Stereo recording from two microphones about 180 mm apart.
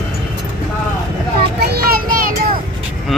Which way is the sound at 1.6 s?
60° right (ahead or behind).